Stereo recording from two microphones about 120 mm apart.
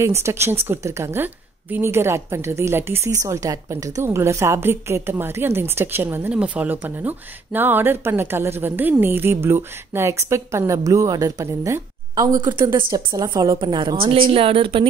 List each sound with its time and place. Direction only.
0.0 s a woman's voice: 20° right (ahead or behind); by 12.6 s 40° right (ahead or behind)
12.6 s a woman's voice: 25° right (ahead or behind); by 14.9 s 45° right (ahead or behind)